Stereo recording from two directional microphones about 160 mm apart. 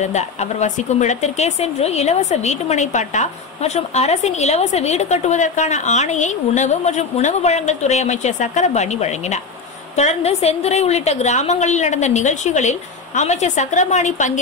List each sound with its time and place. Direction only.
0.0 s speech: 45° left (ahead or behind)